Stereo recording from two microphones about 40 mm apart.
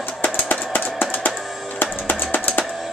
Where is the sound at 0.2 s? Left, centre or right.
Left.